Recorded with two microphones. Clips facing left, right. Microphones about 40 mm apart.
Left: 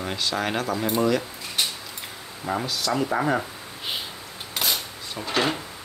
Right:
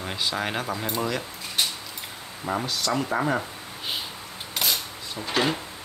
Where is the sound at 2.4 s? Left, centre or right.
Centre.